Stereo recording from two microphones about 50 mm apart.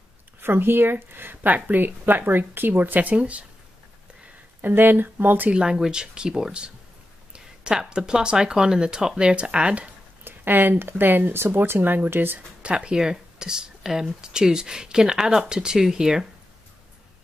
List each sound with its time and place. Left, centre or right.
0.4 s speech: right
3.2 s speech: right
4.6 s speech: right
5.5 s speech: centre
10.2 s speech: right
12.6 s speech: centre